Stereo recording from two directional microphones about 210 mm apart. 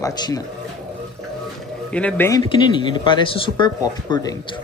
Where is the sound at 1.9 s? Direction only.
5° left (ahead or behind).